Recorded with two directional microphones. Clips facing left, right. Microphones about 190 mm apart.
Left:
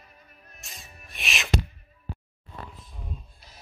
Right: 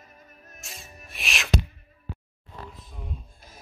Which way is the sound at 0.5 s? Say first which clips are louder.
Right 3 dB; centre (ahead or behind).